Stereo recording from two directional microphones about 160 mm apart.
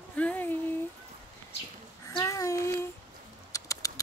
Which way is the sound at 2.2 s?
20° left (ahead or behind).